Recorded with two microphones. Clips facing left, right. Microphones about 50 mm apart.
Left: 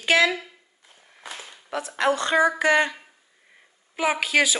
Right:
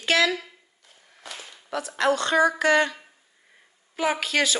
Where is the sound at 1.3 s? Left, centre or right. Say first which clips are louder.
Even; left.